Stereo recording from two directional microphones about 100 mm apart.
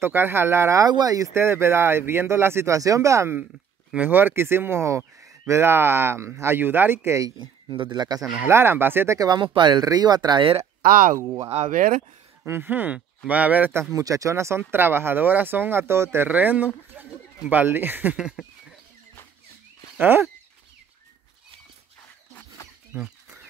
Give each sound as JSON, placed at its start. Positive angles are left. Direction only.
{"t": 0.0, "sound": "speech", "side_deg": -20}
{"t": 0.8, "sound": "speech", "side_deg": -40}
{"t": 3.9, "sound": "speech", "side_deg": -20}
{"t": 7.3, "sound": "speech", "side_deg": -50}
{"t": 8.5, "sound": "speech", "side_deg": -25}
{"t": 9.2, "sound": "speech", "side_deg": -50}
{"t": 11.1, "sound": "speech", "side_deg": -35}
{"t": 12.4, "sound": "speech", "side_deg": -20}
{"t": 13.9, "sound": "speech", "side_deg": -35}
{"t": 18.1, "sound": "speech", "side_deg": -5}
{"t": 20.0, "sound": "speech", "side_deg": -20}
{"t": 22.9, "sound": "speech", "side_deg": -15}